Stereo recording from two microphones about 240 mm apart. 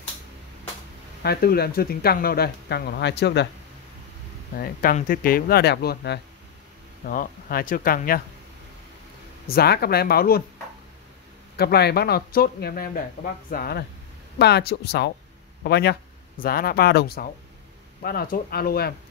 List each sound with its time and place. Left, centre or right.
1.2 s speech: left
4.6 s speech: left
9.5 s speech: left
11.5 s speech: left